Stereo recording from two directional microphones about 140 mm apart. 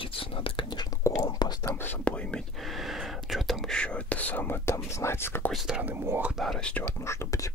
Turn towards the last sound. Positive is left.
turn(degrees=20)  # may be behind; listen again after turning